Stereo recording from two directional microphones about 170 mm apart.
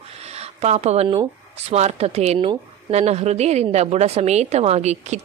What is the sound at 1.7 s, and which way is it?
A woman's voice, 40° right (ahead or behind).